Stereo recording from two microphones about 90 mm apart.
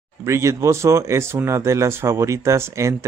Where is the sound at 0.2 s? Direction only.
35° right (ahead or behind).